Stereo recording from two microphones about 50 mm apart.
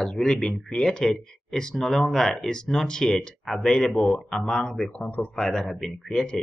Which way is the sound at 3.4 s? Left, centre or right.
Centre.